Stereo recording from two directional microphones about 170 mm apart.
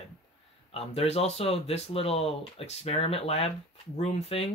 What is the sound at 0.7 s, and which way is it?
Speech, 35° left (ahead or behind).